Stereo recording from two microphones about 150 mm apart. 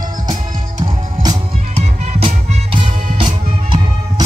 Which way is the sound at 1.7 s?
40° right (ahead or behind).